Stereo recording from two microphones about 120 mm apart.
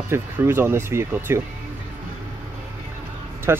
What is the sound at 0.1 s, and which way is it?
Speech, 20° right (ahead or behind).